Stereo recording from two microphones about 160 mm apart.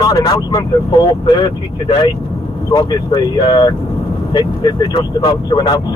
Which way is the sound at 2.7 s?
25° left (ahead or behind).